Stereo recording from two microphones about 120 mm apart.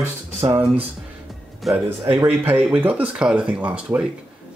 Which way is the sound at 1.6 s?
Centre (ahead or behind).